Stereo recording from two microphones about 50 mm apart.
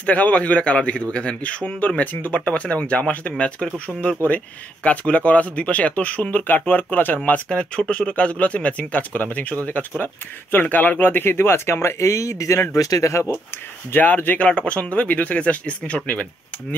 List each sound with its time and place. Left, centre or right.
0.0 s a man's voice: left
6.3 s speech: left
7.4 s a man's voice: centre; by 13.3 s left
13.9 s a man's voice: left